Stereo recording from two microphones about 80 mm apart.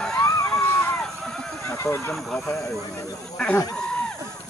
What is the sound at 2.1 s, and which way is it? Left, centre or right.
Speech, centre.